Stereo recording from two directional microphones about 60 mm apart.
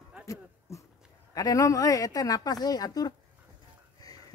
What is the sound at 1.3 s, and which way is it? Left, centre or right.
Speech, left.